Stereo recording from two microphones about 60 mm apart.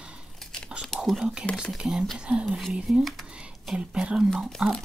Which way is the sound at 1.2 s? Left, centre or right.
Centre.